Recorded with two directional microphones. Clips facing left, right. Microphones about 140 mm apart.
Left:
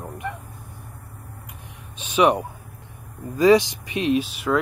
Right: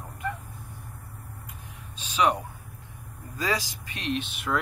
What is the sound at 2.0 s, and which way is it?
Speech, 10° left (ahead or behind).